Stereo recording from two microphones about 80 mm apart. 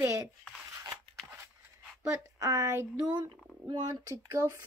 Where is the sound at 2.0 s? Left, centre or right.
Right.